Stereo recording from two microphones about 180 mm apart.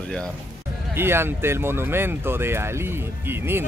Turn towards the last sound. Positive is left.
turn(degrees=-10)  # may be behind; listen again after turning